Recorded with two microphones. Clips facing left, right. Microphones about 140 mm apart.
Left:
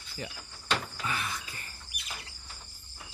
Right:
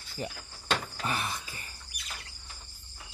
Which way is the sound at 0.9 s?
35° right (ahead or behind).